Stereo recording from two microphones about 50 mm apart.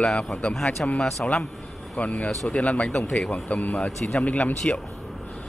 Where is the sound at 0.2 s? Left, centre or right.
Left.